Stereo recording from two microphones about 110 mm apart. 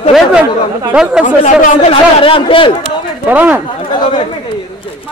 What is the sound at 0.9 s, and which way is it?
Speech, 5° right (ahead or behind).